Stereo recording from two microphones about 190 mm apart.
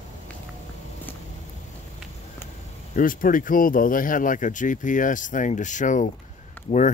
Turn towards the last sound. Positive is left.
turn(degrees=40)  # may be behind; listen again after turning